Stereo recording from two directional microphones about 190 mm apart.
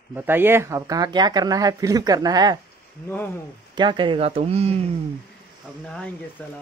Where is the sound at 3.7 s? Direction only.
25° right (ahead or behind).